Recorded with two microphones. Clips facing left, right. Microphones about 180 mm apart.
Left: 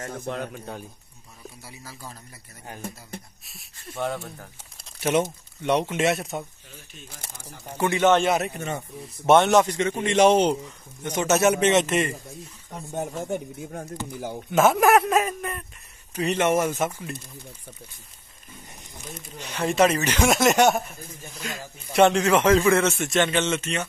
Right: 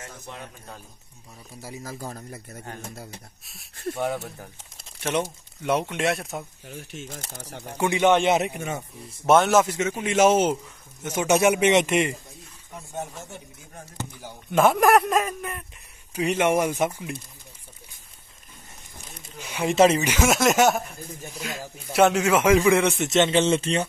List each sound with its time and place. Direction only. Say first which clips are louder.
0.0 s a man's voice: left 9 dB; 60° left (ahead or behind)
1.6 s a man's voice: right 11 dB; 45° right (ahead or behind)
3.9 s speech: right 1 dB; centre (ahead or behind)
6.7 s speech: right 9 dB; 80° right
7.7 s a man's voice: even; 15° right (ahead or behind)
13.2 s speech: left 12 dB; 50° left (ahead or behind)
14.5 s speech: even; centre (ahead or behind)
16.2 s a man's voice: even; 10° right (ahead or behind)
19.4 s a man's voice: even; 10° right (ahead or behind)
19.7 s speech: right 3 dB; 25° right (ahead or behind)
20.0 s speech: left 1 dB; 5° right (ahead or behind)
21.2 s a man's voice: right 1 dB; 10° right (ahead or behind); by 23.9 s 30° right (ahead or behind)